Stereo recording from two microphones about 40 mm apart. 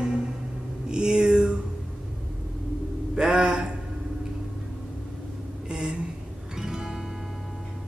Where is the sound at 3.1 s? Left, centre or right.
Centre.